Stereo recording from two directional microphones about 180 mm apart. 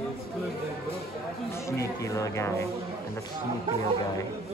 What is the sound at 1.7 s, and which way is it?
Speech, 15° left (ahead or behind).